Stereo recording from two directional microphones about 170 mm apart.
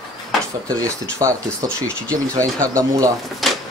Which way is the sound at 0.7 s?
20° right (ahead or behind).